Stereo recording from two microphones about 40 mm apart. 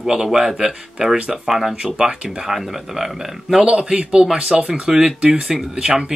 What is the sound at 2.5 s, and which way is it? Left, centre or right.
Speech, centre.